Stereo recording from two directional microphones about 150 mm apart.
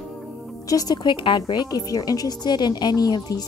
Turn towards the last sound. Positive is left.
turn(degrees=25)  # may be behind; listen again after turning